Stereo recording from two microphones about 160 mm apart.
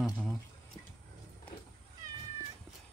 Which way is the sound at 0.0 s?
10° right (ahead or behind).